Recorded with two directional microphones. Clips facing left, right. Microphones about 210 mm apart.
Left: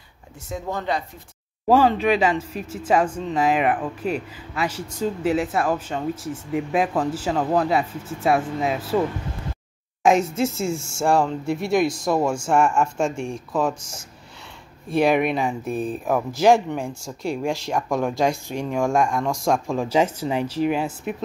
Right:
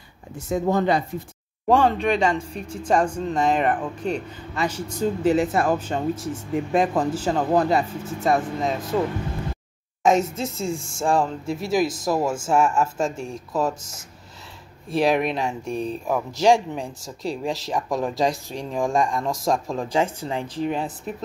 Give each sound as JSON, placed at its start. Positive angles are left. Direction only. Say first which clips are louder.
{"t": 0.5, "sound": "speech", "louder": "right 6 dB", "side_deg": 0}
{"t": 10.1, "sound": "a woman's voice", "louder": "left 2 dB", "side_deg": -20}
{"t": 10.8, "sound": "speech", "louder": "left 2 dB", "side_deg": 0}
{"t": 13.3, "sound": "speech", "louder": "left 1 dB", "side_deg": -20}
{"t": 14.9, "sound": "speech", "louder": "left 2 dB", "side_deg": 0}
{"t": 20.0, "sound": "speech", "louder": "left 3 dB", "side_deg": 15}